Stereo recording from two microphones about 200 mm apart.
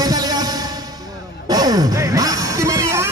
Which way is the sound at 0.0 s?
20° right (ahead or behind).